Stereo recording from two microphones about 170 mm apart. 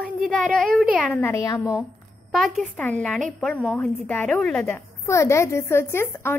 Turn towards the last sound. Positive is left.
turn(degrees=15)  # may be behind; listen again after turning